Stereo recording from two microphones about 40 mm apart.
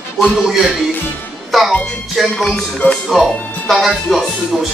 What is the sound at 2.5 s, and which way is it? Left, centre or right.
Music, left.